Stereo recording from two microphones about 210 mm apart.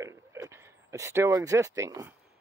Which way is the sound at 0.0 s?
15° right (ahead or behind).